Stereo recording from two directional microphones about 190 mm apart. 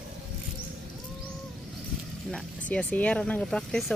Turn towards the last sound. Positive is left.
turn(degrees=5)  # may be behind; listen again after turning